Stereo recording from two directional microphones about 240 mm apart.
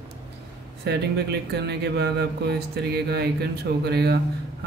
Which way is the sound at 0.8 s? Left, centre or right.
Right.